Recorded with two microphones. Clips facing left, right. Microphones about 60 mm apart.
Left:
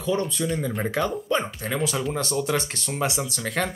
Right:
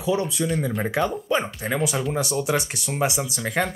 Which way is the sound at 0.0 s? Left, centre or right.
Centre.